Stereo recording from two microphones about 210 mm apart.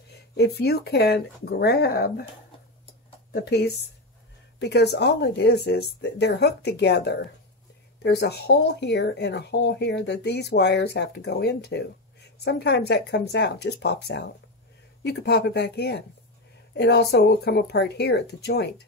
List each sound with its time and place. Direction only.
0.1 s speech: 50° left (ahead or behind)
3.3 s speech: 50° left (ahead or behind)